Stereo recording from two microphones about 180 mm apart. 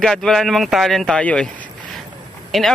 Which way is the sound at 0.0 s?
5° left (ahead or behind).